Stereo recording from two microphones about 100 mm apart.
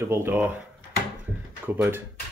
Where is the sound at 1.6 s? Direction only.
20° right (ahead or behind).